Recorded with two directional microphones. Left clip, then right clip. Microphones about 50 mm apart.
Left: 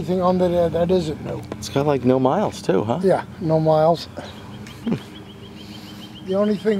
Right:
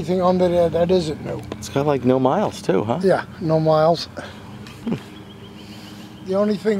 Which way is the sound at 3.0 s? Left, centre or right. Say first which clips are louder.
Right 1 dB; right.